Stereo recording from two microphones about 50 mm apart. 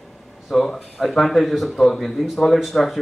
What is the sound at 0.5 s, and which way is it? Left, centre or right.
Speech, centre.